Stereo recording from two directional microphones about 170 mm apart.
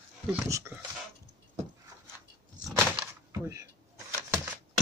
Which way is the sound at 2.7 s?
Centre (ahead or behind).